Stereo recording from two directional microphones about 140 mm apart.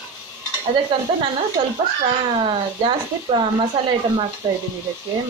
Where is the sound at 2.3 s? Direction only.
35° right (ahead or behind).